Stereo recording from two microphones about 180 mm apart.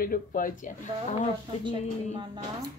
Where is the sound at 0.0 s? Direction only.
50° left (ahead or behind).